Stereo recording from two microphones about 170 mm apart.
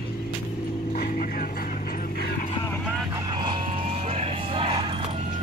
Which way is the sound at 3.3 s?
25° right (ahead or behind).